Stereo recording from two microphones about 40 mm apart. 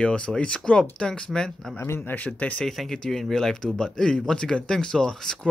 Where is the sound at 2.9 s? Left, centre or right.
Centre.